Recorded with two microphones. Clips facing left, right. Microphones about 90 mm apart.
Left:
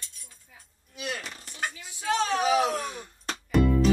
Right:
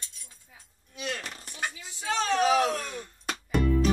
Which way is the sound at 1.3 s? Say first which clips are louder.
Right 1 dB; 20° right (ahead or behind).